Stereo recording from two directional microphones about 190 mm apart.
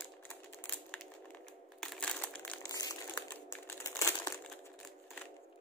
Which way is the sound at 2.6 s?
15° left (ahead or behind).